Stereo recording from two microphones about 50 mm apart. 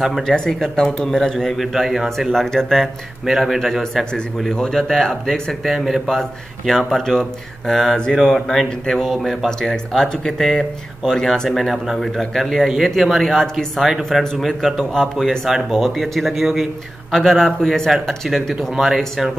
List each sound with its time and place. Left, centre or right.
0.3 s speech: centre
0.7 s speech: centre
1.6 s speech: centre